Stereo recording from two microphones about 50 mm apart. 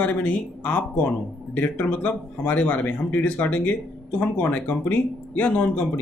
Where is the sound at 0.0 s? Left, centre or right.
Left.